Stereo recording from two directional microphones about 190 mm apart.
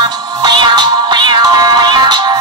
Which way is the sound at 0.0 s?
25° right (ahead or behind).